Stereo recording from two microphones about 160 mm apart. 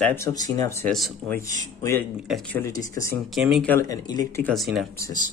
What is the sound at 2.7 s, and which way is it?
Speech, 20° left (ahead or behind).